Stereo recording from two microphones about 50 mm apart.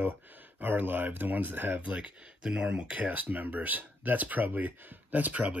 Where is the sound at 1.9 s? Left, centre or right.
Right.